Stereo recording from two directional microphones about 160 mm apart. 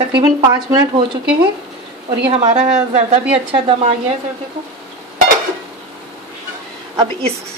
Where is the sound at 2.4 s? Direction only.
50° right (ahead or behind).